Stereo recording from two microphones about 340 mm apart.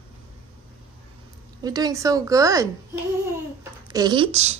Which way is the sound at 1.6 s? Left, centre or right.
Centre.